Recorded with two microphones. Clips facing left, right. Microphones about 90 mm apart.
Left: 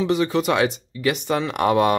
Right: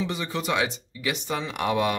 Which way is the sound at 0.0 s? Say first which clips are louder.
Left 9 dB; 65° left (ahead or behind).